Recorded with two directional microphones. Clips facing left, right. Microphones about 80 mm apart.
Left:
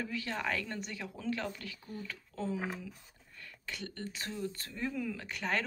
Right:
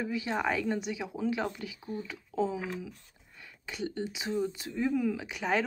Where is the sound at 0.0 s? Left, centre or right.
Centre.